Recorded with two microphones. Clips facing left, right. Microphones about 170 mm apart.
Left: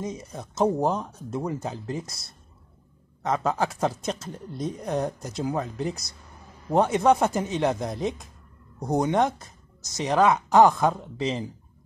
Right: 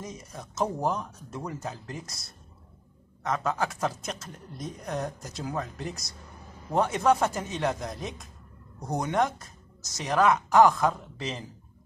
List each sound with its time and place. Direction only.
0.0 s a woman's voice: 25° left (ahead or behind)
3.2 s a woman's voice: 30° left (ahead or behind)